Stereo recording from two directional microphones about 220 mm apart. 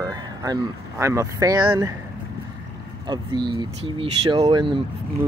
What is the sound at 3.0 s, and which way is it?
Speech, 20° right (ahead or behind).